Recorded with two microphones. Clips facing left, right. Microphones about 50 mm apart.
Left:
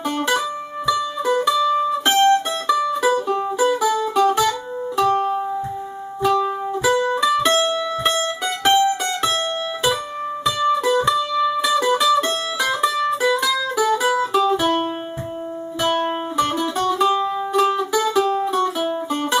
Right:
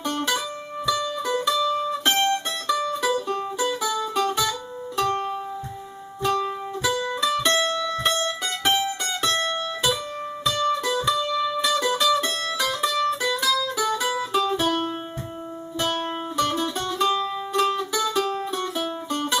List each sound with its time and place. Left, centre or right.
0.0 s music: centre
6.9 s music: left
7.2 s music: centre
10.4 s music: centre
14.6 s music: centre